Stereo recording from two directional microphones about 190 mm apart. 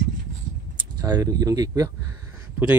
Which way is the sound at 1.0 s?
20° right (ahead or behind).